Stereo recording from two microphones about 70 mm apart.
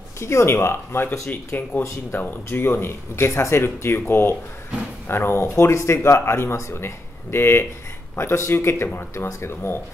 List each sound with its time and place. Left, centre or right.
0.2 s speech: left
2.1 s speech: left